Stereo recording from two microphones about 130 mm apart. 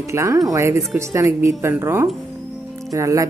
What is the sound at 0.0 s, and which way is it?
Speech, 25° right (ahead or behind).